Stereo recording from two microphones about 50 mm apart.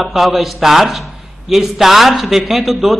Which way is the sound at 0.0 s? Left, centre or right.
Centre.